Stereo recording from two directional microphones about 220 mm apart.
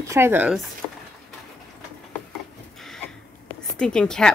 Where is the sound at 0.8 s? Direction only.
5° left (ahead or behind).